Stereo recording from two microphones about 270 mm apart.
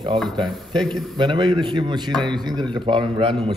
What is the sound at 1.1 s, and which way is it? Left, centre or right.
A man's voice, centre.